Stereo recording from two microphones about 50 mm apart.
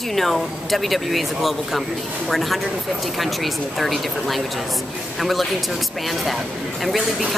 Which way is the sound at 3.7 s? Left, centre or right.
Centre.